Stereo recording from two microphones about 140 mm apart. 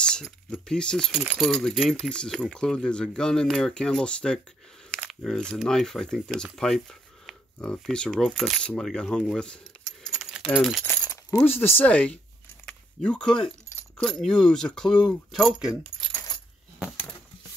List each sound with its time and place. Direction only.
0.0 s coin: 5° left (ahead or behind)
1.2 s speech: 10° right (ahead or behind)
11.1 s coin: 25° left (ahead or behind)
11.6 s speech: 10° left (ahead or behind)
12.6 s a sound: 5° left (ahead or behind)
13.9 s speech: 5° left (ahead or behind)